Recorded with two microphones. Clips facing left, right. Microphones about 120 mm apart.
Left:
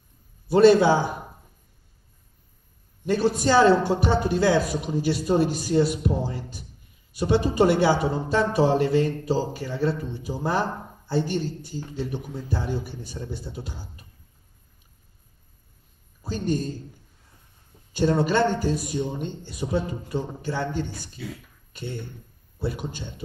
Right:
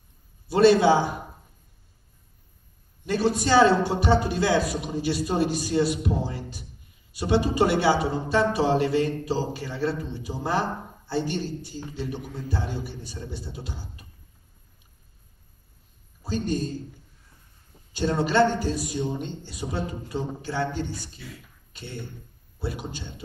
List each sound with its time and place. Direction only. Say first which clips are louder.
0.5 s speech: left 2 dB; 50° left (ahead or behind)
3.2 s speech: even; 50° left (ahead or behind)
16.3 s speech: left 1 dB; 50° left (ahead or behind)
17.9 s speech: left 1 dB; 50° left (ahead or behind)
22.6 s speech: left 3 dB; 50° left (ahead or behind)